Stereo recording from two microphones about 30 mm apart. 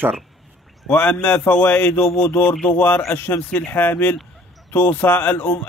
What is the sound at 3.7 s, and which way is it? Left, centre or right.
A man's voice, left.